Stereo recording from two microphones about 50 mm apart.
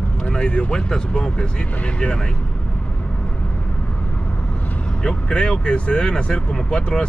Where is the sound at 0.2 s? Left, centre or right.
Left.